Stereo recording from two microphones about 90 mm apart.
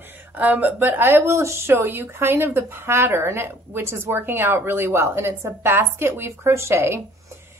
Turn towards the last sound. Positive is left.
turn(degrees=-25)  # may be behind; listen again after turning